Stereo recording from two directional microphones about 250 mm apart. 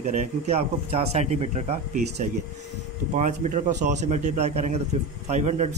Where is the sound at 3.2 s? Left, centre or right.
Right.